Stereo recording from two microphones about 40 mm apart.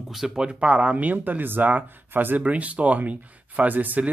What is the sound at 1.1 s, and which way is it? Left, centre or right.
Speech, right.